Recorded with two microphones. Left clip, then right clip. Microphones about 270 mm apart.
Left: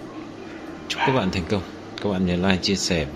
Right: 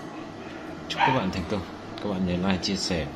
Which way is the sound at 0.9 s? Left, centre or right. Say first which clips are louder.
Left 2 dB; left.